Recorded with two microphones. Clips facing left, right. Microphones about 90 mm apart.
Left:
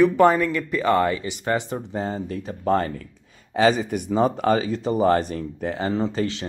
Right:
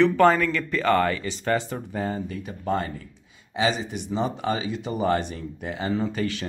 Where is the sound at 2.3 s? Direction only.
35° left (ahead or behind).